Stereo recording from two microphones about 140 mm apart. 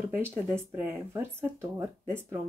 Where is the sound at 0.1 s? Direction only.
15° right (ahead or behind).